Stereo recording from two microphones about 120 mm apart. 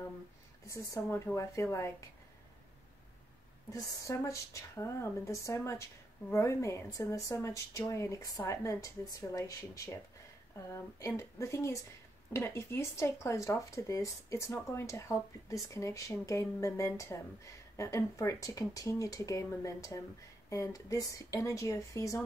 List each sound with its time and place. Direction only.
0.7 s speech: 25° left (ahead or behind)
3.7 s speech: 25° left (ahead or behind)